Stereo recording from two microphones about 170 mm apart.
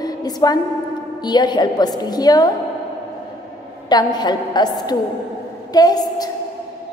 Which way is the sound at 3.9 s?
25° left (ahead or behind).